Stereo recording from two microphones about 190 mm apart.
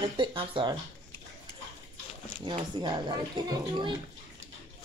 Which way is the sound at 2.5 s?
25° right (ahead or behind).